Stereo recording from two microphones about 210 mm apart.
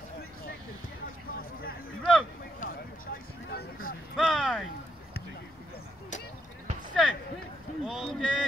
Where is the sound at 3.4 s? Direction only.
50° left (ahead or behind).